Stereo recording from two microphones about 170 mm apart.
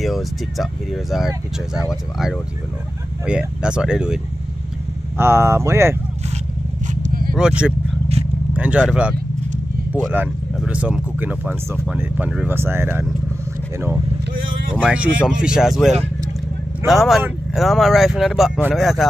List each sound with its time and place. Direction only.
0.0 s speech: centre (ahead or behind)
5.1 s speech: 15° right (ahead or behind)
6.9 s vehicle: 50° right (ahead or behind)
7.3 s speech: 5° right (ahead or behind)
10.1 s speech: 5° right (ahead or behind)